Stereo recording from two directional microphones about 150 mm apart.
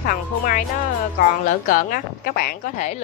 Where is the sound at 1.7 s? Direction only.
75° left (ahead or behind).